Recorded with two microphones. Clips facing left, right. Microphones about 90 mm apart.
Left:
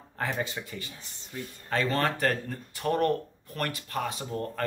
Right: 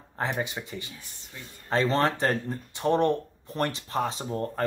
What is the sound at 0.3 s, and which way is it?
Speech, 15° right (ahead or behind).